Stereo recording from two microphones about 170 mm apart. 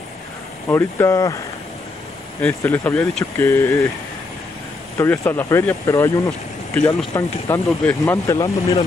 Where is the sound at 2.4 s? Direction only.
10° left (ahead or behind).